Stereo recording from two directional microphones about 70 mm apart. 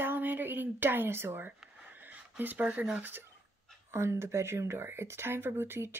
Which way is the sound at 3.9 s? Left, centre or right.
Right.